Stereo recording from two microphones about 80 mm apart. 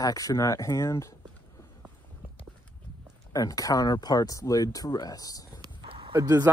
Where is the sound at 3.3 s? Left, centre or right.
Left.